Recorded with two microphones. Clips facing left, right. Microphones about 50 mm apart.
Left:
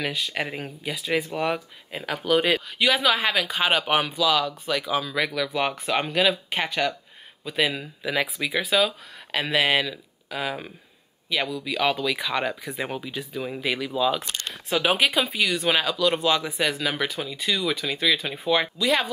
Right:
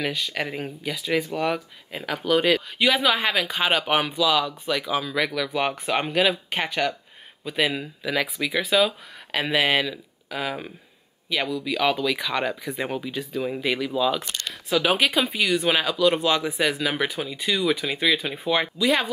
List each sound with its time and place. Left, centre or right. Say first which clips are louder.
0.0 s speech: right 1 dB; centre
8.0 s speech: even; centre